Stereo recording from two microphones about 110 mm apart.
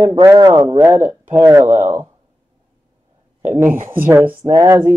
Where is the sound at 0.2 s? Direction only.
35° right (ahead or behind).